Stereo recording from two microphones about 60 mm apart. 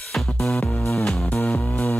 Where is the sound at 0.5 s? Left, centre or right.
Left.